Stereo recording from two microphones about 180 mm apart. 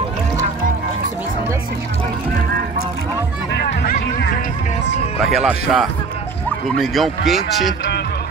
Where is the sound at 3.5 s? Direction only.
60° left (ahead or behind).